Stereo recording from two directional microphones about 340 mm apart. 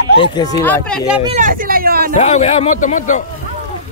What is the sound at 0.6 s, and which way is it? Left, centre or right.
Speech, centre.